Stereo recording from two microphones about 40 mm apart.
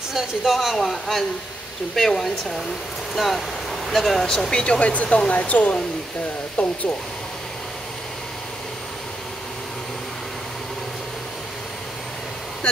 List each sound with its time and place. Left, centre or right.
0.1 s speech: centre
4.7 s speech: left